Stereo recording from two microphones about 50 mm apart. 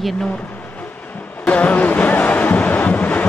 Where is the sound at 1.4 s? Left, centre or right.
Left.